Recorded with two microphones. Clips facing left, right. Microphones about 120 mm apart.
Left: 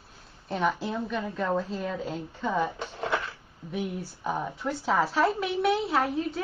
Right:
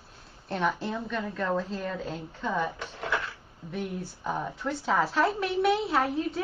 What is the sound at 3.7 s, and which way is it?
Speech, 10° left (ahead or behind).